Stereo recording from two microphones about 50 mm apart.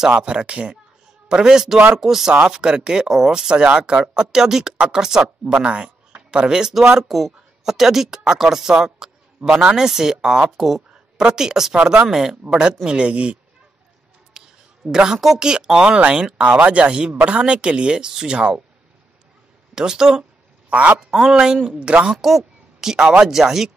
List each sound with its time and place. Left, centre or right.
0.1 s speech: right
5.5 s speech: right
7.1 s a woman's voice: centre; by 13.4 s right
14.9 s speech: centre
19.7 s speech: centre
22.1 s speech: centre